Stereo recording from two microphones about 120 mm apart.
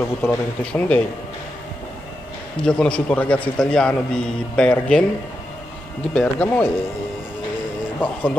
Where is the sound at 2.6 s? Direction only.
5° left (ahead or behind).